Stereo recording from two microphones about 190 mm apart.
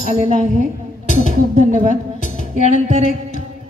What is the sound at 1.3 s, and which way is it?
Speech, 45° right (ahead or behind).